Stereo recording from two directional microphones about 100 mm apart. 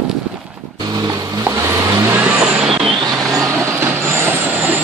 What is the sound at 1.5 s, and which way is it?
Vehicle, 30° right (ahead or behind).